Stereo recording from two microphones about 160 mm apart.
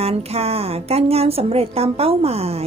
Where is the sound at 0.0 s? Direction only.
40° right (ahead or behind).